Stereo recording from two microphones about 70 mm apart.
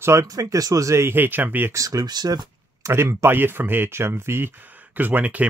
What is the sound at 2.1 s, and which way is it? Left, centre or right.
Speech, right.